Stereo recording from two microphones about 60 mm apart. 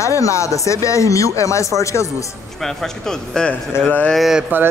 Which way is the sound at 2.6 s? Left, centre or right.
Centre.